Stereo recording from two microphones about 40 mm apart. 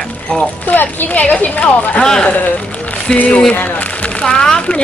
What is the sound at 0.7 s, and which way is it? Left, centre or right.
Speech, left.